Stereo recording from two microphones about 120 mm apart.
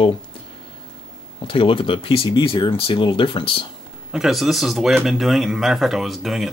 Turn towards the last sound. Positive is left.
turn(degrees=0)  # may be behind; listen again after turning